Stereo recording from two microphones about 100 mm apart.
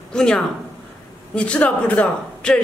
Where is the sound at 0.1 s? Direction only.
5° left (ahead or behind).